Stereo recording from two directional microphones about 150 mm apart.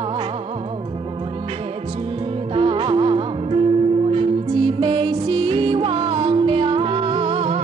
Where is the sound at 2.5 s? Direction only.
35° right (ahead or behind).